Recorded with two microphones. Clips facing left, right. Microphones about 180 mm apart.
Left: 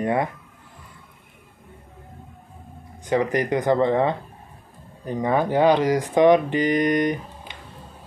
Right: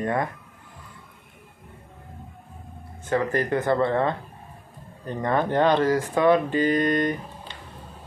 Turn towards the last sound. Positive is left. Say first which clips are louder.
# left 2 dB
turn(degrees=15)  # may be behind; listen again after turning